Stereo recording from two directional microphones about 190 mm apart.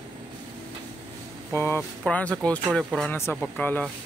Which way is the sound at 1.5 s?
10° left (ahead or behind).